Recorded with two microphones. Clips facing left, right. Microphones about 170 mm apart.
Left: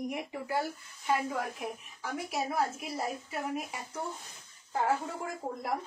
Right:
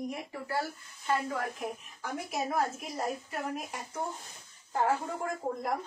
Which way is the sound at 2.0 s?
Centre (ahead or behind).